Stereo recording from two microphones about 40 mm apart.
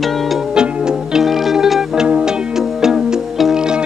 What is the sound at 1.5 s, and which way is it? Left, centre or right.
Music, centre.